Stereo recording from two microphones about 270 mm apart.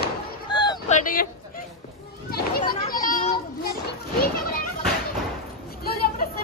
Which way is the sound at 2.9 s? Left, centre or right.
Left.